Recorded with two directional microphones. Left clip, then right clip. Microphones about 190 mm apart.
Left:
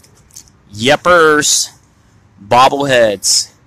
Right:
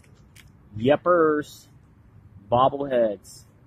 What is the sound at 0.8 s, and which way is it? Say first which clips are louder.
Speech: left 11 dB; 30° left (ahead or behind).